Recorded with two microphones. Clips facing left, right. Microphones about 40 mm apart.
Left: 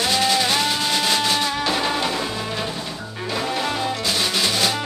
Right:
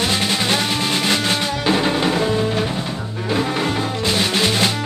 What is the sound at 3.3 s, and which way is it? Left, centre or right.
Music, centre.